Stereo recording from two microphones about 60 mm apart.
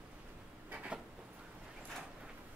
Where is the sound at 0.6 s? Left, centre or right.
Right.